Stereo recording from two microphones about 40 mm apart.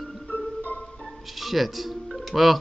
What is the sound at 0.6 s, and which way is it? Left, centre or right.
Music, left.